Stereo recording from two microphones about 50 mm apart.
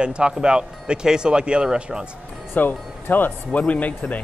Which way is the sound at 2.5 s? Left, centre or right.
Left.